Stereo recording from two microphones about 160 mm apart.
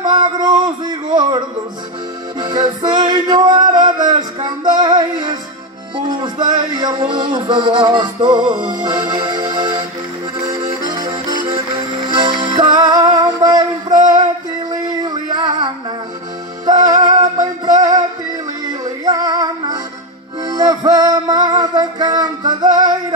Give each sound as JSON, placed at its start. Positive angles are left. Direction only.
{"t": 0.0, "sound": "a sound", "side_deg": -25}
{"t": 2.4, "sound": "male singing", "side_deg": -25}
{"t": 6.2, "sound": "music", "side_deg": -25}
{"t": 8.5, "sound": "music", "side_deg": -10}
{"t": 8.8, "sound": "music", "side_deg": -25}